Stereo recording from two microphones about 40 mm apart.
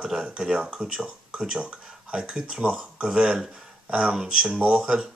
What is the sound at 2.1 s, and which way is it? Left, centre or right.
Speech, centre.